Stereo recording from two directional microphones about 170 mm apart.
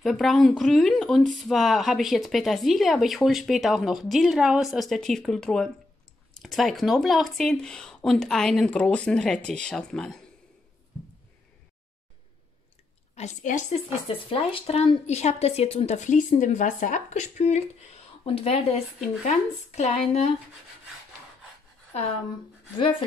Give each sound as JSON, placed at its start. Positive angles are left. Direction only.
{"t": 0.0, "sound": "speech", "side_deg": 0}
{"t": 13.1, "sound": "a woman's voice", "side_deg": 40}
{"t": 14.0, "sound": "a woman's voice", "side_deg": 30}